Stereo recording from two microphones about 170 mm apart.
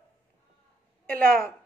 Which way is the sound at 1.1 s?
60° right (ahead or behind).